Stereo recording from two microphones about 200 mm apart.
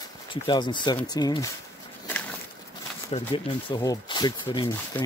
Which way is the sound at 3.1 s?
25° left (ahead or behind).